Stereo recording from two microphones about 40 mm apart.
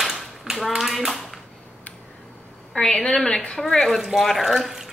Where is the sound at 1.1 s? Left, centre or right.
Centre.